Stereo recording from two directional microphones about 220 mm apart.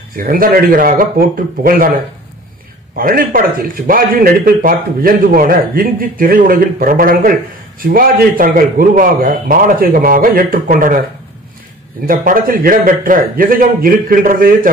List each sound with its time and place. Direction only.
0.1 s speech: 40° right (ahead or behind)
3.0 s speech: 40° right (ahead or behind)
12.1 s speech: 40° right (ahead or behind)